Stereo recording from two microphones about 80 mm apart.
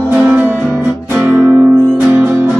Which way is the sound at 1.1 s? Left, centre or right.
Right.